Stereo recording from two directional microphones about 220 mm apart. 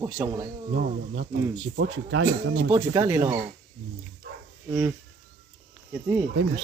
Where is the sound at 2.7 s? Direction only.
15° right (ahead or behind).